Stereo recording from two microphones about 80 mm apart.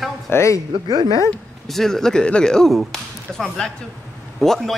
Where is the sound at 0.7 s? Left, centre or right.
Right.